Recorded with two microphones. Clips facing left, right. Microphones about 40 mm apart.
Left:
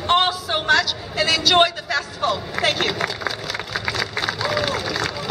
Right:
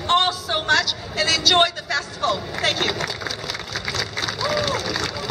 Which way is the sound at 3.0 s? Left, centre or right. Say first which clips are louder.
Left 3 dB; centre.